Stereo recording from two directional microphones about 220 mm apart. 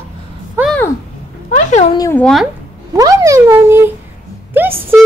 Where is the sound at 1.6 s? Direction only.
35° left (ahead or behind).